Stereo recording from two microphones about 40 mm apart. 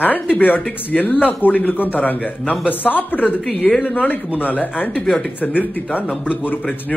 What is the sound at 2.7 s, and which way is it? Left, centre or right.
A man's voice, left.